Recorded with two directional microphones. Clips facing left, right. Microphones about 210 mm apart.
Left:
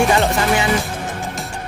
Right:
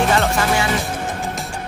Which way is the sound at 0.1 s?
15° left (ahead or behind).